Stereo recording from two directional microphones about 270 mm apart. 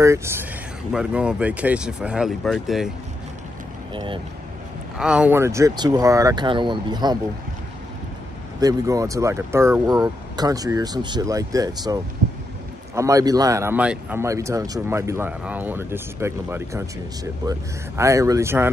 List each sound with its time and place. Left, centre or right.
0.0 s speech: centre
3.9 s speech: centre
4.9 s speech: centre
8.5 s speech: centre